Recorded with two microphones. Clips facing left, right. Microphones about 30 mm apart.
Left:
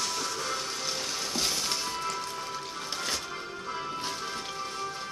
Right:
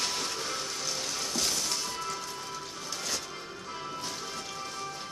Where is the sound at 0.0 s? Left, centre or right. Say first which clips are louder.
Left 1 dB; centre.